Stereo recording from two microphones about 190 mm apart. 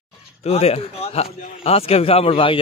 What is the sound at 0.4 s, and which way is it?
A man's voice, 35° left (ahead or behind).